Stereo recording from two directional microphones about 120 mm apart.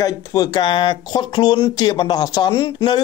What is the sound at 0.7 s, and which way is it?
Speech, 40° left (ahead or behind).